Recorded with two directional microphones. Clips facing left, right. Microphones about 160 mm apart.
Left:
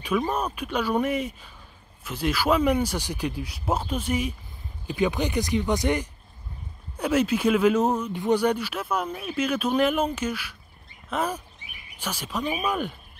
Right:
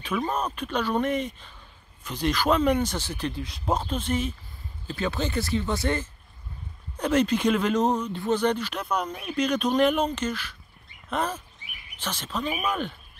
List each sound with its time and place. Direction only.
0.0 s speech: 10° left (ahead or behind)